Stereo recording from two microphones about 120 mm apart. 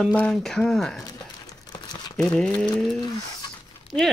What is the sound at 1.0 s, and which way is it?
Crumpling, 30° left (ahead or behind).